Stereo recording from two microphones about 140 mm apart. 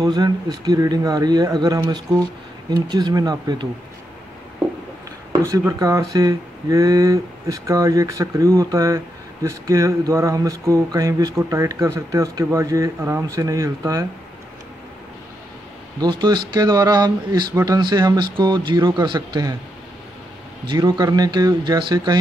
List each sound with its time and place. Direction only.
0.0 s speech: 30° right (ahead or behind)
5.5 s speech: 25° right (ahead or behind)
16.0 s speech: 30° right (ahead or behind)
20.6 s speech: 30° right (ahead or behind)